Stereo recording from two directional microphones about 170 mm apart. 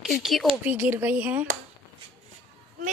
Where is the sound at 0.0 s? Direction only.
Centre (ahead or behind).